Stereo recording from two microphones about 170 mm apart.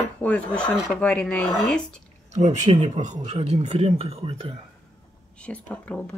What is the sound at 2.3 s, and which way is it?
Speech, 45° right (ahead or behind).